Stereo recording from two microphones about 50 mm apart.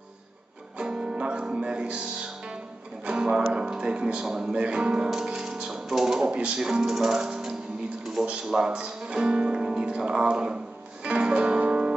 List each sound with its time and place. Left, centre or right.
0.7 s music: centre
4.6 s speech: right
6.2 s speech: right
7.2 s music: centre
8.5 s speech: centre
11.1 s music: centre